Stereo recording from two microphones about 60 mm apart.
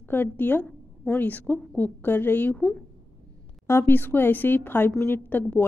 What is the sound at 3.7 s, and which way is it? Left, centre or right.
A woman's voice, left.